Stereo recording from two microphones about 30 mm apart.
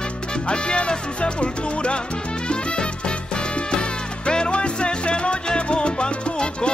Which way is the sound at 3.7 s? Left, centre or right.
Left.